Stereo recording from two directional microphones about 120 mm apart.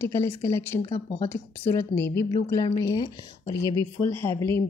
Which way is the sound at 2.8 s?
35° left (ahead or behind).